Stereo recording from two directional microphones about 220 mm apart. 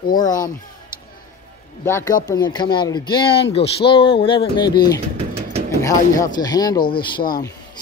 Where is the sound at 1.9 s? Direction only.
10° left (ahead or behind).